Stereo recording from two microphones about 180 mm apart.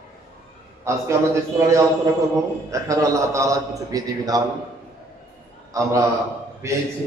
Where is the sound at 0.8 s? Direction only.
15° right (ahead or behind).